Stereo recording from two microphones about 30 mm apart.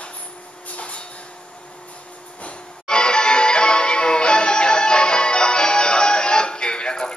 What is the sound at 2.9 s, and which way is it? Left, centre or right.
Music, left.